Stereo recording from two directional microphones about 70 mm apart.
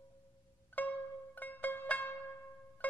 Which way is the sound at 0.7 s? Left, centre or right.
Left.